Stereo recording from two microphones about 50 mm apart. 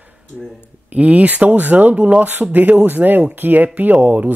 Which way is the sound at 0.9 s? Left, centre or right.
Right.